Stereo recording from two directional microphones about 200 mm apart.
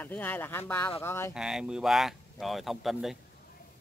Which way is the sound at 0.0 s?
10° left (ahead or behind).